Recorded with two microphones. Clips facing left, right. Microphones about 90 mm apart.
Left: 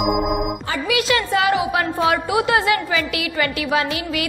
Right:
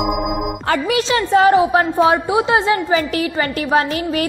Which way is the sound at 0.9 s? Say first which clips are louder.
Right 2 dB; 30° right (ahead or behind).